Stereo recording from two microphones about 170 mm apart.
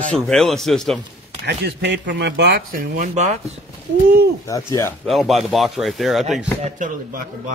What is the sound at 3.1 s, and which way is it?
Speech, 40° right (ahead or behind).